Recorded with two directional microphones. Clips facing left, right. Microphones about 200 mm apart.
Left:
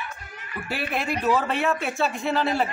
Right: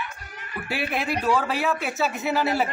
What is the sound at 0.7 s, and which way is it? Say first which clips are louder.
A man's voice: right 1 dB; 10° right (ahead or behind).